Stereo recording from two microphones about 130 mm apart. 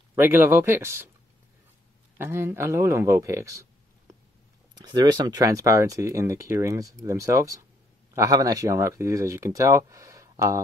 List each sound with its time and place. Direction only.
0.1 s speech: 15° right (ahead or behind)
2.1 s speech: 20° right (ahead or behind)
4.7 s speech: 30° right (ahead or behind)